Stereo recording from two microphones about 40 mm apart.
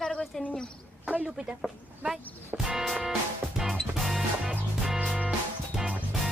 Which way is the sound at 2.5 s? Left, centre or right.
Right.